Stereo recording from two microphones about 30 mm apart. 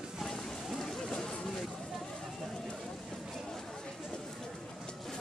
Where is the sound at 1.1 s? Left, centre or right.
Left.